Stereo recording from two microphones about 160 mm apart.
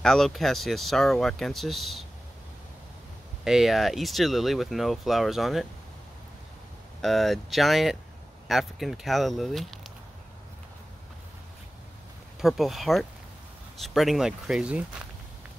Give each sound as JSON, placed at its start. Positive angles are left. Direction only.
{"t": 0.0, "sound": "speech", "side_deg": 0}
{"t": 3.4, "sound": "speech", "side_deg": 0}
{"t": 7.0, "sound": "speech", "side_deg": 0}
{"t": 12.4, "sound": "speech", "side_deg": 0}